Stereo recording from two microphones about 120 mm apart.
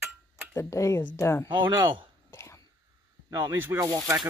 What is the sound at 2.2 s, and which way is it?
Throat clearing, 25° left (ahead or behind).